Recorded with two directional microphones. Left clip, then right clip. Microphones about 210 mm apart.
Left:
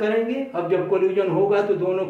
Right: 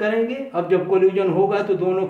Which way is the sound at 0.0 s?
35° right (ahead or behind).